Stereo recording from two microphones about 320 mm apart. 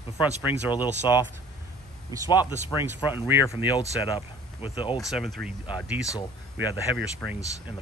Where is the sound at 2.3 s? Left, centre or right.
Centre.